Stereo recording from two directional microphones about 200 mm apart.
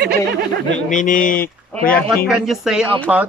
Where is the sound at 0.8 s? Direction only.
40° left (ahead or behind).